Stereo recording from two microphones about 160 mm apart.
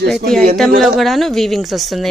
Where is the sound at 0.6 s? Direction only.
Centre (ahead or behind).